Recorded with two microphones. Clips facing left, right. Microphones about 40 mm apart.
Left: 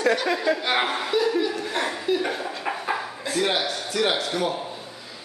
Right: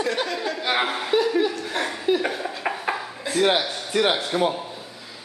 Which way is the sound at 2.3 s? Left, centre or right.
Centre.